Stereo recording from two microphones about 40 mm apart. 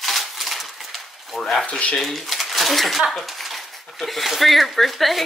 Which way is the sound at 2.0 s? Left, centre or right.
Centre.